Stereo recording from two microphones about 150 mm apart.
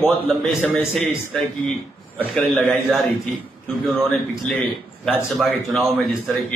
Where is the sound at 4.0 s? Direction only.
Centre (ahead or behind).